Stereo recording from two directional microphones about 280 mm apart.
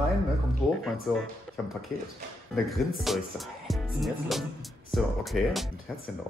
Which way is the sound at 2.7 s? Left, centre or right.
Centre.